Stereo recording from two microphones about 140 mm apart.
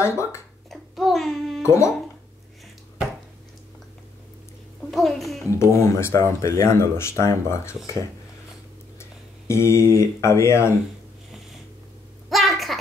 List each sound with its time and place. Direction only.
0.0 s speech: 20° left (ahead or behind)
0.7 s a sound: centre (ahead or behind)
1.6 s speech: 20° left (ahead or behind)
4.9 s a child's voice: centre (ahead or behind)
5.4 s speech: 20° left (ahead or behind)
9.5 s speech: 20° left (ahead or behind)
12.3 s a sound: centre (ahead or behind)